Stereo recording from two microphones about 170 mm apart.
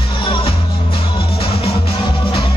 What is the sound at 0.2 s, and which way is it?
Music, 30° left (ahead or behind).